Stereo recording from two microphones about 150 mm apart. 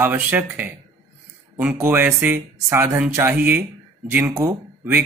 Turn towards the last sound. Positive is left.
turn(degrees=-15)  # may be behind; listen again after turning